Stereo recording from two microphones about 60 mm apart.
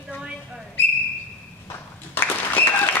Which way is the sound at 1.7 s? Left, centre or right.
Left.